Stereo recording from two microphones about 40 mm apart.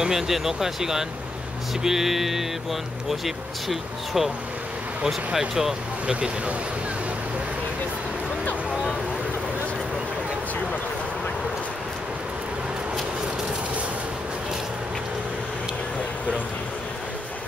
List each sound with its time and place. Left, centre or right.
0.1 s speech: centre
6.0 s speech: right